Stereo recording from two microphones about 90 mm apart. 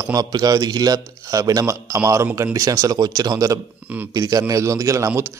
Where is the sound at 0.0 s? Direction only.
40° right (ahead or behind).